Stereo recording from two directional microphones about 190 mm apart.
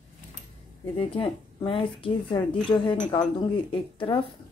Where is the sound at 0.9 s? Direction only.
25° left (ahead or behind).